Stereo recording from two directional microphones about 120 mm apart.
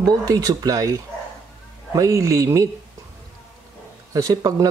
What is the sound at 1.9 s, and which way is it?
Speech, 25° right (ahead or behind).